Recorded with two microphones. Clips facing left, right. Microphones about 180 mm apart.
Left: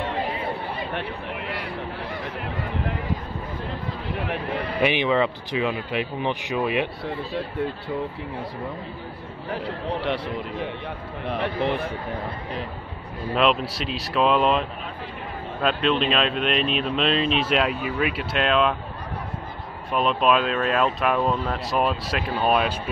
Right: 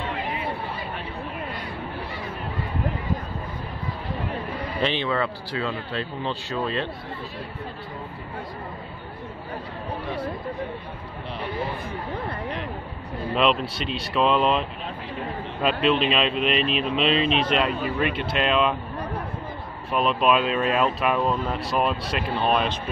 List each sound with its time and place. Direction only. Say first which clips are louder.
4.8 s speech: left 4 dB; 15° left (ahead or behind)
9.5 s speech: left 6 dB; 85° left
13.3 s speech: left 1 dB; centre (ahead or behind)
19.9 s speech: even; centre (ahead or behind)